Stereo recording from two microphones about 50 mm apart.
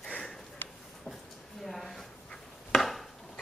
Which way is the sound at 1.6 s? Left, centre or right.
Centre.